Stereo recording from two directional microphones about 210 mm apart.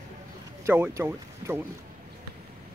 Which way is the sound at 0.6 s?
10° right (ahead or behind).